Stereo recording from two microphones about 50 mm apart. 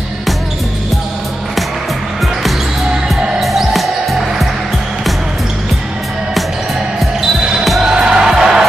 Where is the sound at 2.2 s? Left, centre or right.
Centre.